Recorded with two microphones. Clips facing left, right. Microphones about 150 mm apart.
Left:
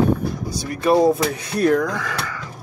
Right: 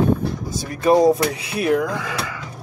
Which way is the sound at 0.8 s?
15° right (ahead or behind).